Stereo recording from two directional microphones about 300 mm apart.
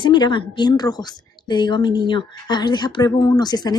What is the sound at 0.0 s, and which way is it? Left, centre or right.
A woman's voice, centre.